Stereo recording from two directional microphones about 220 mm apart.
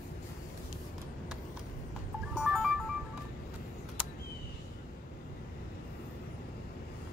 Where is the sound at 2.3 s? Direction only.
Centre (ahead or behind).